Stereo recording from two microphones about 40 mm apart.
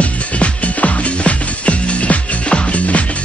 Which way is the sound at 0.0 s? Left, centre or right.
Left.